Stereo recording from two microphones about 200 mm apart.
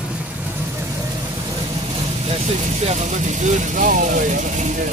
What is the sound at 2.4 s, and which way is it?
Speech, 35° right (ahead or behind).